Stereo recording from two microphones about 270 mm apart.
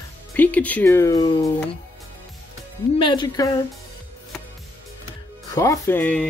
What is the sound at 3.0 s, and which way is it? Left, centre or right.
Speech, centre.